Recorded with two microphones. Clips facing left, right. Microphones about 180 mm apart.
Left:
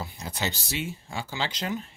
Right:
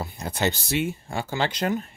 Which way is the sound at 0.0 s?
55° right (ahead or behind).